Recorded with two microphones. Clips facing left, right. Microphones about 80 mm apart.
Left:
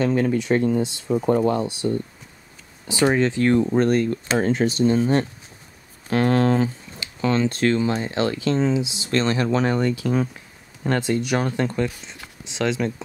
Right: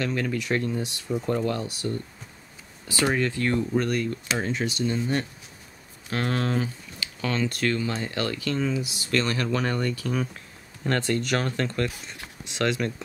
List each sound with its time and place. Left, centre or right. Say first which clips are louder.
0.0 s speech: left 7 dB; left
4.1 s speech: left 7 dB; left
6.0 s speech: left 8 dB; left; by 12.9 s centre